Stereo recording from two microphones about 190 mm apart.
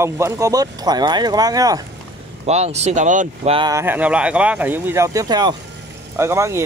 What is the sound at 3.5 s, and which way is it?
Speech, 20° right (ahead or behind).